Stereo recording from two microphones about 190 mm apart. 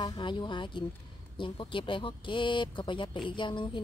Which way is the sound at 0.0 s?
25° left (ahead or behind).